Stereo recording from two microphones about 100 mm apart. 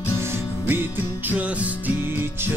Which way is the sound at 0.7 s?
20° right (ahead or behind).